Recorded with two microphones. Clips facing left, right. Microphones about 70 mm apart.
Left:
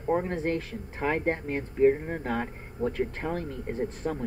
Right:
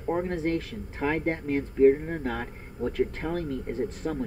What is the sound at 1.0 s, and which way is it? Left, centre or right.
Speech, centre.